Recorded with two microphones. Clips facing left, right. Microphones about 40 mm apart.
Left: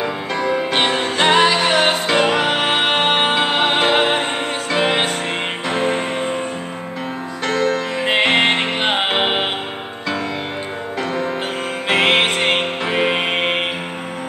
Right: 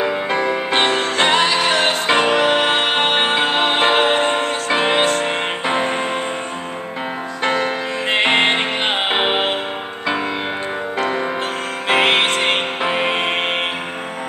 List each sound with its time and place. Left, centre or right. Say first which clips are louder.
0.0 s music: right 3 dB; centre
0.7 s music: right 1 dB; centre
4.6 s music: left 1 dB; centre
7.4 s music: left 1 dB; centre
8.1 s music: even; centre
11.9 s music: even; centre